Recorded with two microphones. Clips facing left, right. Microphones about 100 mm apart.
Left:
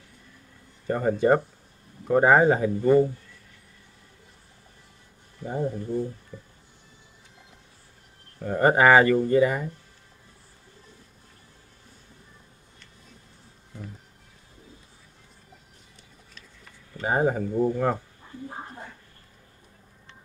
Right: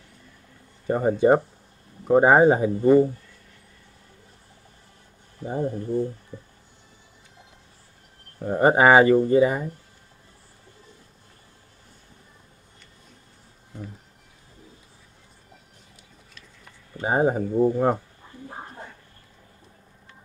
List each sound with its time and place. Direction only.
0.8 s speech: 20° right (ahead or behind)
5.4 s speech: 15° right (ahead or behind)
6.3 s speech: 20° right (ahead or behind)
8.4 s speech: 20° right (ahead or behind)
16.9 s speech: 20° right (ahead or behind)